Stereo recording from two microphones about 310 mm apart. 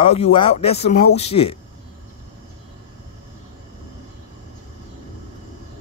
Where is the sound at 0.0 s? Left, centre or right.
Centre.